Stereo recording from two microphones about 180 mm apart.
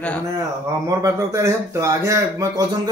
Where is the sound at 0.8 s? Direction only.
20° right (ahead or behind).